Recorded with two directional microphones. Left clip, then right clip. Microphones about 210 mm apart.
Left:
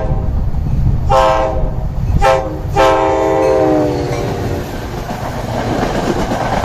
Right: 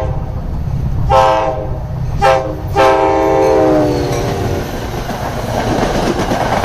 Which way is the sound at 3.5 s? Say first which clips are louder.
Right 1 dB; 35° right (ahead or behind).